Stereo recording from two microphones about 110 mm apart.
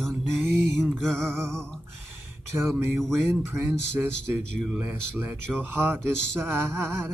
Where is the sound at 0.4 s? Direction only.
5° left (ahead or behind).